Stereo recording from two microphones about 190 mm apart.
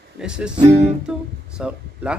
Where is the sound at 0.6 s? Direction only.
35° right (ahead or behind).